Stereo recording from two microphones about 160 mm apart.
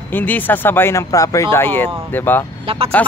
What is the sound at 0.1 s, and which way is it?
Speech, 10° left (ahead or behind).